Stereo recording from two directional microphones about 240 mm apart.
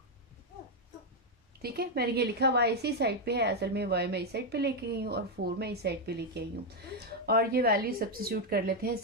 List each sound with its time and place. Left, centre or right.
1.6 s a woman's voice: right